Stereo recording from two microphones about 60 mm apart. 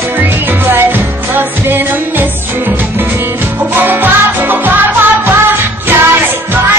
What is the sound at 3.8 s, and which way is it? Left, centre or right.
Music, right.